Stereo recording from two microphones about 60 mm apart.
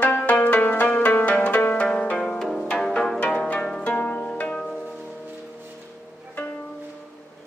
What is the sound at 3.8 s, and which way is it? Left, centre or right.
Pizzicato, left.